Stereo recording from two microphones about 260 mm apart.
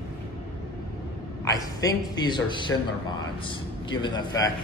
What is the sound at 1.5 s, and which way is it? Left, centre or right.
A man's voice, centre.